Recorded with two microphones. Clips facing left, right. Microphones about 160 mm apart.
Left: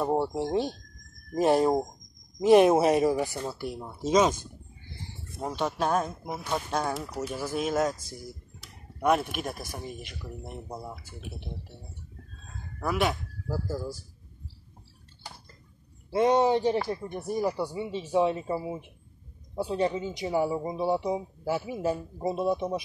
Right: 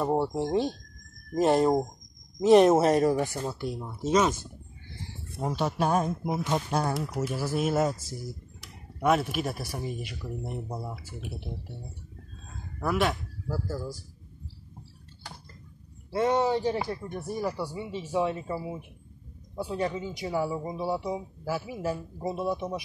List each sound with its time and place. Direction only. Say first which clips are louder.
0.0 s speech: even; centre (ahead or behind)
5.4 s speech: right 1 dB; 5° right (ahead or behind)
12.8 s speech: right 1 dB; centre (ahead or behind)
16.1 s speech: left 3 dB; 20° left (ahead or behind)